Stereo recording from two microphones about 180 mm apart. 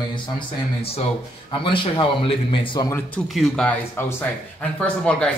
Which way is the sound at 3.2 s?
Centre (ahead or behind).